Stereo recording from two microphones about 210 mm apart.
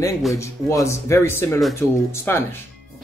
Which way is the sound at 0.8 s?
15° left (ahead or behind).